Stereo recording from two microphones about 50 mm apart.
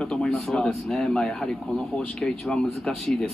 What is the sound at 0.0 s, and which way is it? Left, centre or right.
Speech, centre.